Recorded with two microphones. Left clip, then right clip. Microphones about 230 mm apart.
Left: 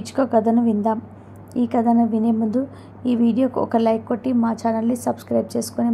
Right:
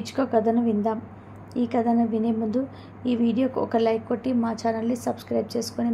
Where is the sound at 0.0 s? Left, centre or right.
Centre.